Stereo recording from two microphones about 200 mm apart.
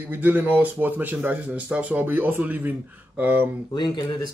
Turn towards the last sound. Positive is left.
turn(degrees=20)  # may be behind; listen again after turning